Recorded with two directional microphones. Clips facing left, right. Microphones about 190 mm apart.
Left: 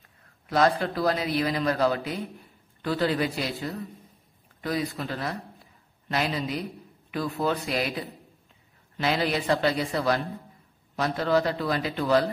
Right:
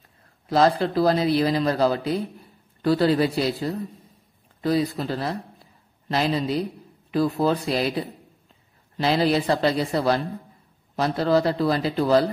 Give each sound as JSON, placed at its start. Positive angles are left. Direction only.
{"t": 0.5, "sound": "a man's voice", "side_deg": -30}